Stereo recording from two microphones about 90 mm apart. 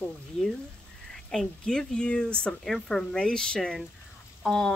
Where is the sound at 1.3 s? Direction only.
5° left (ahead or behind).